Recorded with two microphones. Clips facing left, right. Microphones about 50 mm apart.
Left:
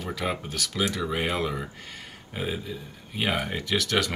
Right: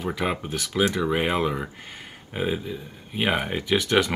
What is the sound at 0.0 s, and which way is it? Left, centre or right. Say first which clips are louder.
Speech: right 3 dB; centre.